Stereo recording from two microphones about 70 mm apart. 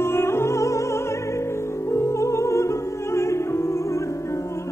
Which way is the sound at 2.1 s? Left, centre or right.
Left.